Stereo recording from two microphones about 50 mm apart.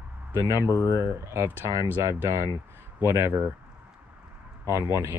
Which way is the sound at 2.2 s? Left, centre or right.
Right.